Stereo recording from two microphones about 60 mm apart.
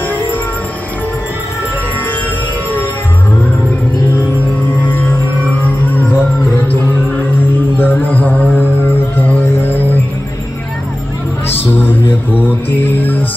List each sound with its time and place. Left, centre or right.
4.8 s music: left
7.7 s music: left
11.4 s music: left